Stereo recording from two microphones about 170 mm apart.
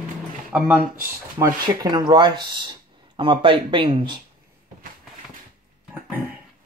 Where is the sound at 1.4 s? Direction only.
25° right (ahead or behind).